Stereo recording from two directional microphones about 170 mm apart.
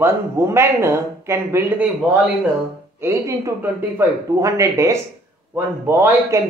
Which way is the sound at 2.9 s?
15° right (ahead or behind).